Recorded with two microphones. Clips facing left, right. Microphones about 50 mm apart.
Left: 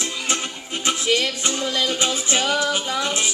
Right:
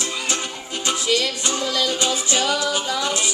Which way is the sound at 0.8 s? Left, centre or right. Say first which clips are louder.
Left 1 dB; left.